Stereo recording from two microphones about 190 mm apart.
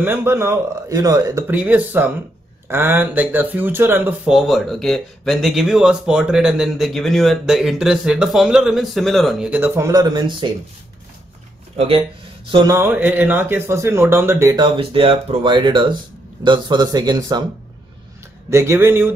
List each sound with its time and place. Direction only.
0.0 s speech: 10° right (ahead or behind)
12.4 s speech: 15° right (ahead or behind)
14.8 s speech: 30° right (ahead or behind)
18.5 s speech: 15° right (ahead or behind)